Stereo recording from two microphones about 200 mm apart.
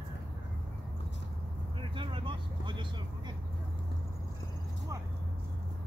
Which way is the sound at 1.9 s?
25° right (ahead or behind).